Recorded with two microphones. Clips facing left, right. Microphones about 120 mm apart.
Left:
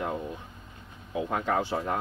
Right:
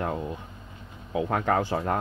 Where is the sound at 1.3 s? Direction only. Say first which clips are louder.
Right 3 dB; 55° right (ahead or behind).